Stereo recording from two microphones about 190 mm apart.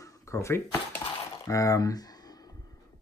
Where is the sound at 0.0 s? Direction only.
15° left (ahead or behind).